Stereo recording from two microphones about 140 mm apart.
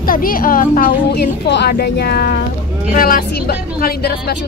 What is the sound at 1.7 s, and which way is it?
Speech, 90° left.